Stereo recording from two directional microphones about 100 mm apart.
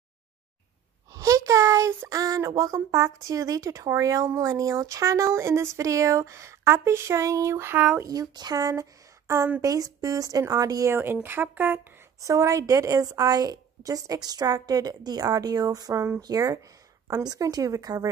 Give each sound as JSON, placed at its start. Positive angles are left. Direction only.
{"t": 1.1, "sound": "a sound", "side_deg": -30}
{"t": 2.0, "sound": "a woman's voice", "side_deg": -35}
{"t": 8.1, "sound": "a woman's voice", "side_deg": -40}
{"t": 10.9, "sound": "speech", "side_deg": -25}
{"t": 12.2, "sound": "a woman's voice", "side_deg": -35}